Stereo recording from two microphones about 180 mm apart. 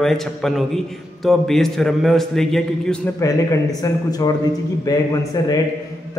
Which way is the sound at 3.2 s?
20° left (ahead or behind).